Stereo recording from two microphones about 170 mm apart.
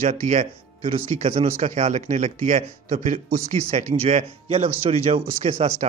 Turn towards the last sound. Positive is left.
turn(degrees=-40)  # may be behind; listen again after turning